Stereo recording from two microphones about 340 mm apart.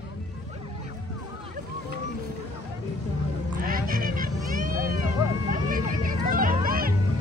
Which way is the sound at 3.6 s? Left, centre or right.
Right.